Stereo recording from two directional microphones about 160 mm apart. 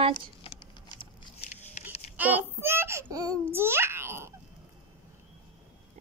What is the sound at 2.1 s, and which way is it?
Babbling, 10° right (ahead or behind).